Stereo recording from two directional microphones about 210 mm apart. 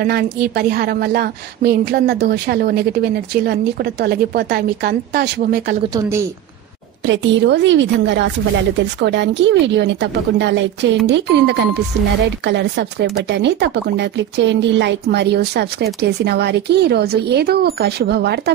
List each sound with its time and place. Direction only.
0.0 s speech: 50° right (ahead or behind)
5.9 s a woman's voice: 15° right (ahead or behind)
7.1 s a woman's voice: 60° right (ahead or behind)